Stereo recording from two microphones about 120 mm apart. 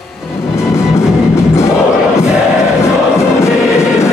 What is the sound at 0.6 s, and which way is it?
Music, 20° left (ahead or behind).